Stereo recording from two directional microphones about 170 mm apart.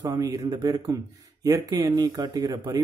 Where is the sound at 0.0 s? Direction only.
20° right (ahead or behind).